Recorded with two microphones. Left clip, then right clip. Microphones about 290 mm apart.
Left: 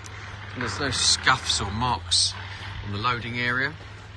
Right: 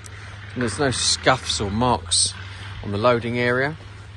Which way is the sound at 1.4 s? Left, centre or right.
Centre.